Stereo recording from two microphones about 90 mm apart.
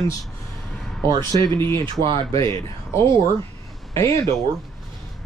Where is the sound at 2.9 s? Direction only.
35° left (ahead or behind).